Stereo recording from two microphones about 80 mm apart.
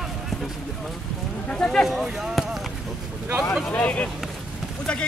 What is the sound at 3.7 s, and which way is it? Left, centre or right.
Speech, centre.